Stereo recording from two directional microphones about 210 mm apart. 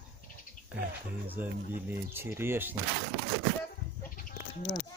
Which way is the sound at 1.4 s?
10° right (ahead or behind).